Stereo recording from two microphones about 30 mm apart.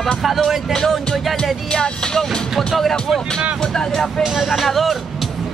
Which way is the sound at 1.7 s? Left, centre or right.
Left.